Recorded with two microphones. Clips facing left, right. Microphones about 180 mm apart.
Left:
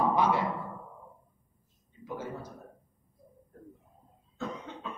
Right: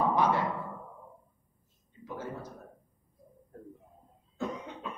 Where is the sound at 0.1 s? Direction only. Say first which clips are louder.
Even; 10° left (ahead or behind).